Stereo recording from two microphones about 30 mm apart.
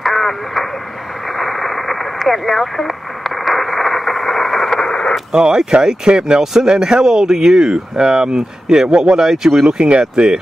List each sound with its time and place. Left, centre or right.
0.0 s radio: centre
5.3 s speech: right
9.8 s speech: right